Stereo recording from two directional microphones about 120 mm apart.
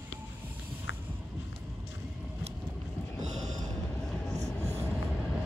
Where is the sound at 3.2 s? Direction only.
80° right.